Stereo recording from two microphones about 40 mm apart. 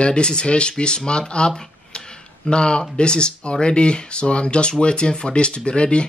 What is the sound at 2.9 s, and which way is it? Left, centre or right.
Speech, left.